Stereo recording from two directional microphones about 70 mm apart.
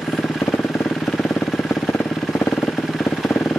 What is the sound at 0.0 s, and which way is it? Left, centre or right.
Vehicle, centre.